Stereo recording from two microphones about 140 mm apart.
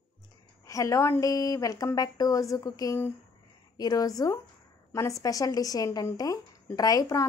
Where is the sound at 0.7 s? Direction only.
20° left (ahead or behind).